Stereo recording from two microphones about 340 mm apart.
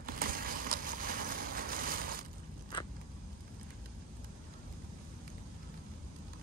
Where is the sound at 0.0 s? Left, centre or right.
Right.